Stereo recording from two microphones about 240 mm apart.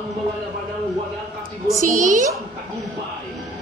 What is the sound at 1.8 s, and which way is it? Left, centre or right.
Speech, right.